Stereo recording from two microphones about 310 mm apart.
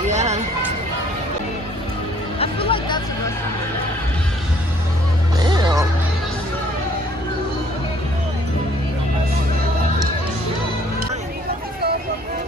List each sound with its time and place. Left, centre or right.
0.1 s a sound: right
2.3 s music: centre
5.4 s music: centre